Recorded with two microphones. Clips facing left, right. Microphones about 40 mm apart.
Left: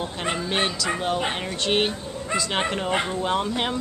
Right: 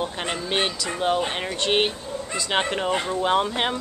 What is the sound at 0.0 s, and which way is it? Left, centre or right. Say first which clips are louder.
Speech: even; centre.